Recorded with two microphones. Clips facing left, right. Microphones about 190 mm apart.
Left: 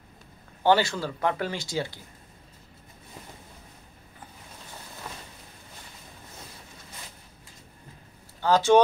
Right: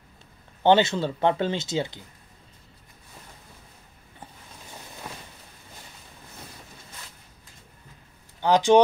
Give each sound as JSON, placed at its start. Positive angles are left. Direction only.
{"t": 0.7, "sound": "speech", "side_deg": -20}
{"t": 8.4, "sound": "a man's voice", "side_deg": -15}